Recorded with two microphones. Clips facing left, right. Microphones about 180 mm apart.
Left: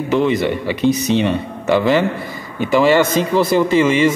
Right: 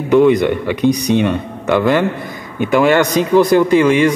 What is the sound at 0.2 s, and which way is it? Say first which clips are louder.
Speech: right 5 dB; 55° right (ahead or behind).